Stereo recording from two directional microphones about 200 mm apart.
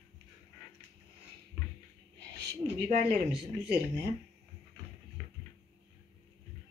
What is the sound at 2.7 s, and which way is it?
Speech, 50° right (ahead or behind).